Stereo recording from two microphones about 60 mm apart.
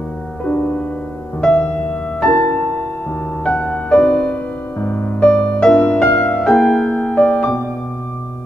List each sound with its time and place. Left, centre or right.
1.4 s music: centre
3.4 s music: centre
4.7 s music: left
5.3 s music: centre